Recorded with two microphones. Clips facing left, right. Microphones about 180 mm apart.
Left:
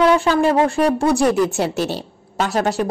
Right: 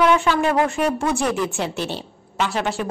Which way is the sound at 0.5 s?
35° left (ahead or behind).